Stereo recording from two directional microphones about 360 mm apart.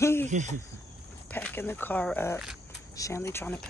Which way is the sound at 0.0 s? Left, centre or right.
Centre.